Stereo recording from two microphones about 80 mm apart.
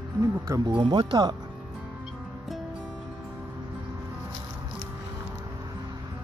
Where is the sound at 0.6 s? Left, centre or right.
Right.